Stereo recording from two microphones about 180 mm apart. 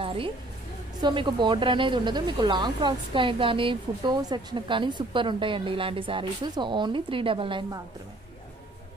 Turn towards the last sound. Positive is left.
turn(degrees=-30)  # may be behind; listen again after turning